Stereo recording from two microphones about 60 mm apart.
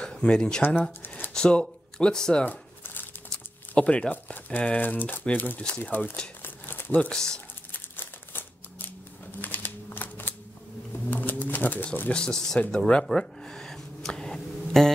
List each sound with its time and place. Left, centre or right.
0.0 s speech: centre
0.6 s speech: left
1.0 s a sound: left
1.3 s speech: centre
2.8 s crumpling: left
3.3 s speech: left
6.4 s crumpling: left
7.1 s speech: centre
7.7 s crumpling: left
9.4 s a sound: left; by 14.9 s centre